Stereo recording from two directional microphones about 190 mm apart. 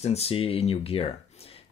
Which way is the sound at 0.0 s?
35° left (ahead or behind).